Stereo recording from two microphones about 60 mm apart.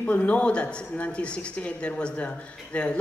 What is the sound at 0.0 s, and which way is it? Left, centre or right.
Speech, left.